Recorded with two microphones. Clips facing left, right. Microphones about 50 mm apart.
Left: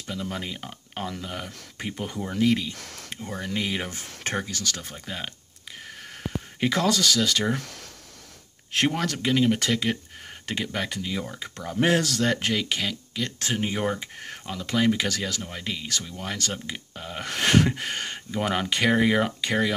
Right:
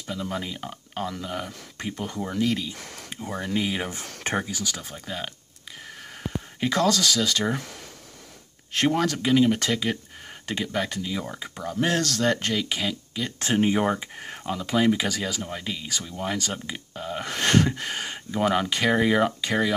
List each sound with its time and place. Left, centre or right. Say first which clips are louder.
0.0 s speech: right 1 dB; centre
3.9 s speech: right 2 dB; right
4.4 s speech: right 1 dB; centre
6.6 s speech: right 1 dB; centre
8.7 s speech: right 2 dB; centre
11.1 s speech: right 1 dB; centre
11.8 s speech: left 1 dB; centre